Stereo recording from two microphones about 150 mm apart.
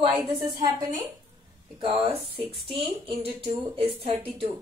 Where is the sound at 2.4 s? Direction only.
40° right (ahead or behind).